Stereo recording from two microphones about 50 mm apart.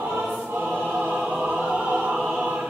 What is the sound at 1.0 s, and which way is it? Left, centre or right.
Choir, right.